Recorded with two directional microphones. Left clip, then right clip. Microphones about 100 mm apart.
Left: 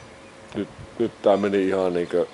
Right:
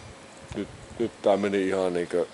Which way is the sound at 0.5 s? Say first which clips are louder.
Left 4 dB; 5° right (ahead or behind).